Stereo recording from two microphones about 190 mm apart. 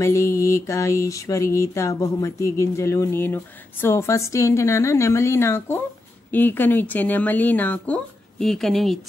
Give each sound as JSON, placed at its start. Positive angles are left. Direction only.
{"t": 0.0, "sound": "speech", "side_deg": 15}